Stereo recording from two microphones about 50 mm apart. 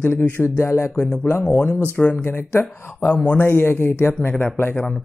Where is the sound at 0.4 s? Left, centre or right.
Left.